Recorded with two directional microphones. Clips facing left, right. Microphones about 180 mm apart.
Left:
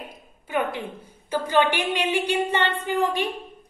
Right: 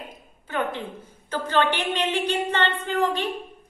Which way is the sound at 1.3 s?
10° left (ahead or behind).